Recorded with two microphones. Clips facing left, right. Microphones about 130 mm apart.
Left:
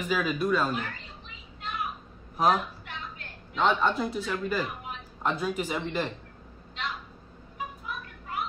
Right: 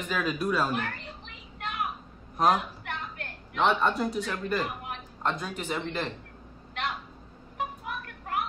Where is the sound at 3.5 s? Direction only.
5° right (ahead or behind).